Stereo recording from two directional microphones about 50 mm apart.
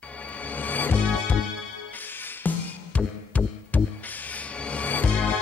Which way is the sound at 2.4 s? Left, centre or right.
Left.